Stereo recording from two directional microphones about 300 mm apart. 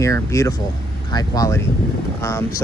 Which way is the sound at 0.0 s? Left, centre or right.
Centre.